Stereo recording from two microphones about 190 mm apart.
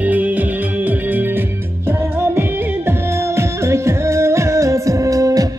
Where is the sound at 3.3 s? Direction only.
15° right (ahead or behind).